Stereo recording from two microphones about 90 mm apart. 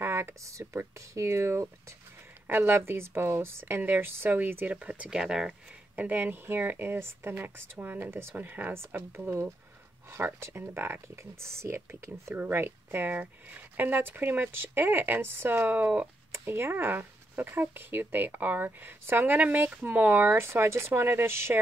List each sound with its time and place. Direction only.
0.0 s speech: 30° right (ahead or behind)
4.7 s speech: 15° right (ahead or behind)
5.9 s speech: 20° right (ahead or behind)